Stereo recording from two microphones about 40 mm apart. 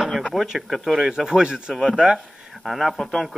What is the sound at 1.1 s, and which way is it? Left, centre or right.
Speech, centre.